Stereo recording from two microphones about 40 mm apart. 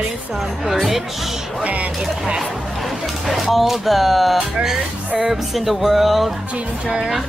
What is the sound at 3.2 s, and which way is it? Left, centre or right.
Music, centre.